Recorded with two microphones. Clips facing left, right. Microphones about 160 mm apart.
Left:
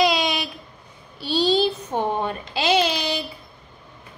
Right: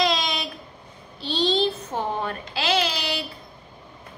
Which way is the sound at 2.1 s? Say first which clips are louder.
Left 3 dB; 20° left (ahead or behind).